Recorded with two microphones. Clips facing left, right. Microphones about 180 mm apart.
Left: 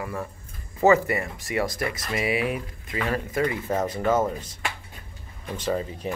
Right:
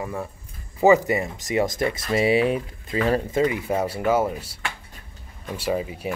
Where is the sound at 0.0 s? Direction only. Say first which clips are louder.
Right 2 dB; 15° right (ahead or behind).